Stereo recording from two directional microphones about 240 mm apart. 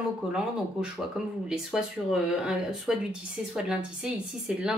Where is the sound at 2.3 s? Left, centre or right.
Centre.